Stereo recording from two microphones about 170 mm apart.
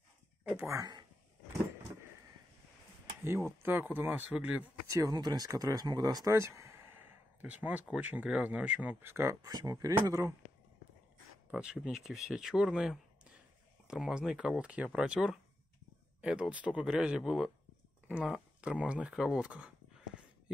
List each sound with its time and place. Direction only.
0.5 s speech: 15° right (ahead or behind)
3.2 s speech: 15° right (ahead or behind)
11.5 s speech: 5° right (ahead or behind)